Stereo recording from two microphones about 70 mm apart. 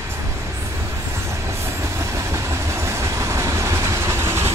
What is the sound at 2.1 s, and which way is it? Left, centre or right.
Train, right.